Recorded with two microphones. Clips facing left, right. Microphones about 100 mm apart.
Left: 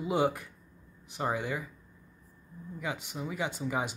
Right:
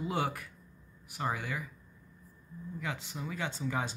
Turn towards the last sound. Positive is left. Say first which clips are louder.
# left 2 dB
turn(degrees=15)  # may be behind; listen again after turning